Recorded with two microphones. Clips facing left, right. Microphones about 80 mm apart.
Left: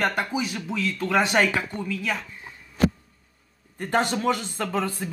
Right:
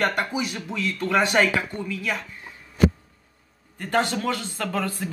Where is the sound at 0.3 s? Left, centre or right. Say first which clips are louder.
Left 1 dB; centre.